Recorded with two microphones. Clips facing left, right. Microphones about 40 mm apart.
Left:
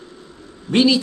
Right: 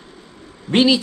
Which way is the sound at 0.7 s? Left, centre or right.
Centre.